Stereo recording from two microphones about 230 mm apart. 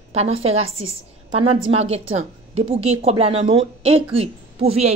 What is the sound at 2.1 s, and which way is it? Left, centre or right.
Speech, right.